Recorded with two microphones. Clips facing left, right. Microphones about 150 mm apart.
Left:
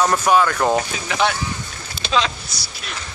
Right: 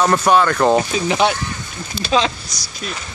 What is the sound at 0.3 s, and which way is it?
Speech, 5° left (ahead or behind).